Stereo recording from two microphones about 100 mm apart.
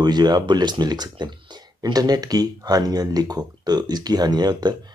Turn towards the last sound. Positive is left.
turn(degrees=-45)  # may be behind; listen again after turning